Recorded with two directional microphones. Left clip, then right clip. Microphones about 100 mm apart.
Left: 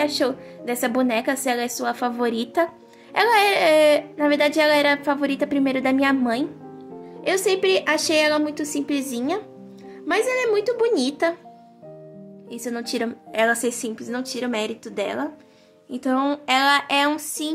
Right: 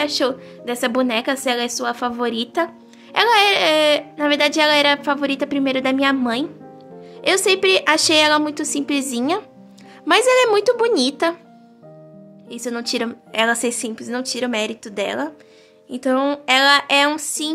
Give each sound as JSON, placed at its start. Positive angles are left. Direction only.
{"t": 0.0, "sound": "a woman's voice", "side_deg": -15}
{"t": 7.2, "sound": "a woman's voice", "side_deg": -35}
{"t": 10.0, "sound": "speech", "side_deg": -65}
{"t": 10.9, "sound": "a woman's voice", "side_deg": -30}
{"t": 12.4, "sound": "a woman's voice", "side_deg": -20}